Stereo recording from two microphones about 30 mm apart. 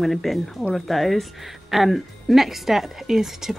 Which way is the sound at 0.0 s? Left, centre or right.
Centre.